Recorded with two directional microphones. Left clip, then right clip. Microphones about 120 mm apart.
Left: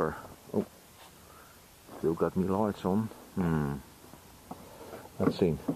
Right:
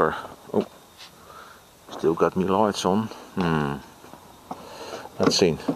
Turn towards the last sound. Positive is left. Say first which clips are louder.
# right 9 dB
turn(degrees=-40)  # may be behind; listen again after turning